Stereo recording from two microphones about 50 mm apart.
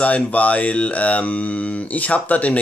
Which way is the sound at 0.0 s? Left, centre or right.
Left.